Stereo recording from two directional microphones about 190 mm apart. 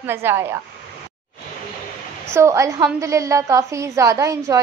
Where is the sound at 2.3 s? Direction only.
15° right (ahead or behind).